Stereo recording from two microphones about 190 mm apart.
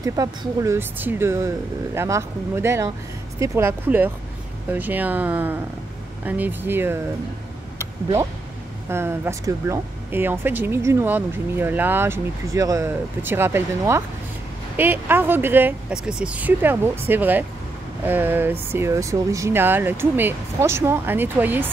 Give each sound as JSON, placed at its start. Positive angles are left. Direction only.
{"t": 0.0, "sound": "speech", "side_deg": -20}
{"t": 7.8, "sound": "a sound", "side_deg": -15}
{"t": 8.8, "sound": "speech", "side_deg": -10}